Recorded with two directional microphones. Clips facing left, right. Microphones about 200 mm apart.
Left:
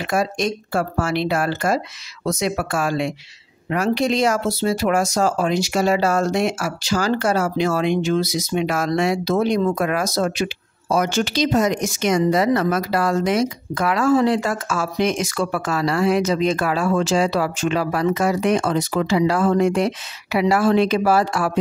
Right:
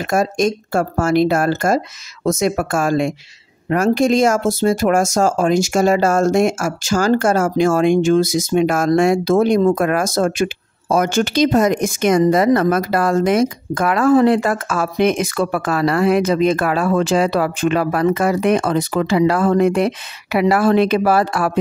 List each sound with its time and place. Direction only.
0.0 s speech: 45° right (ahead or behind)